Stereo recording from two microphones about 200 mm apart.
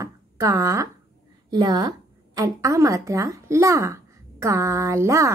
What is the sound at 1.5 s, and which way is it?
A woman's voice, 20° right (ahead or behind).